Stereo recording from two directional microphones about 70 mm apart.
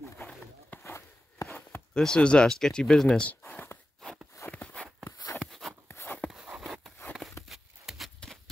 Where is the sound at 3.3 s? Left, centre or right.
Left.